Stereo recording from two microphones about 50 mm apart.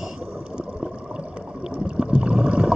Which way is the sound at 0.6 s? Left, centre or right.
Centre.